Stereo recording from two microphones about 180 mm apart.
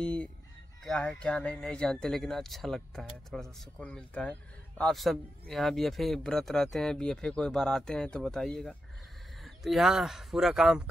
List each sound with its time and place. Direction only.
0.0 s chicken: 5° left (ahead or behind)
0.8 s speech: 5° left (ahead or behind)